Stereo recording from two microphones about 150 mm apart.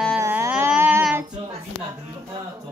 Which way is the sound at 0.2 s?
15° right (ahead or behind).